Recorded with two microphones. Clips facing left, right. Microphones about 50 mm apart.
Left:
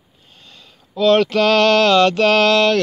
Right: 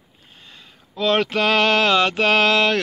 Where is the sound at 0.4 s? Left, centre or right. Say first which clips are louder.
Even; right.